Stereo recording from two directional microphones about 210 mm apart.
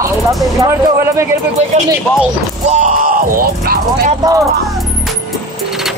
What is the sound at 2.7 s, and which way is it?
Music, 40° right (ahead or behind).